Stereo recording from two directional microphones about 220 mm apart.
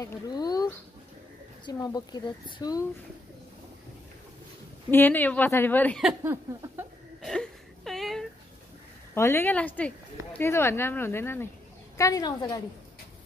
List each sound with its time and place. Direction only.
0.0 s speech: 15° left (ahead or behind)
1.7 s speech: 20° left (ahead or behind)
4.9 s speech: 10° left (ahead or behind)
7.2 s whimper: centre (ahead or behind)
9.1 s speech: 10° left (ahead or behind)